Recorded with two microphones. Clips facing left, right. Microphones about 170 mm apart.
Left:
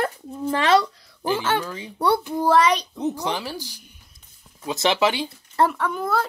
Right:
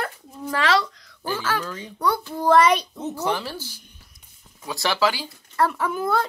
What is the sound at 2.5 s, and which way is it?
Speech, 5° right (ahead or behind).